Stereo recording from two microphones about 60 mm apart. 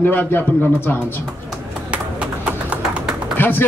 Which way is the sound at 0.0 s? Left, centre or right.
Left.